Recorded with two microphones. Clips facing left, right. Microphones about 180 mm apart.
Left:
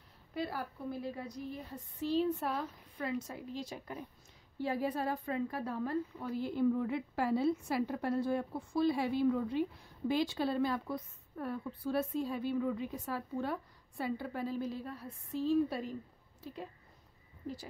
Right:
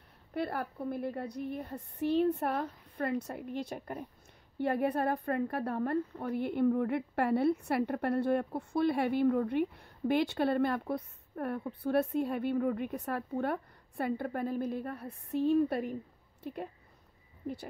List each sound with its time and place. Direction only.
0.3 s a woman's voice: 60° right (ahead or behind)